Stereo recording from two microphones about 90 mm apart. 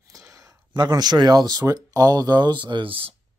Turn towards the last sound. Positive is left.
turn(degrees=-80)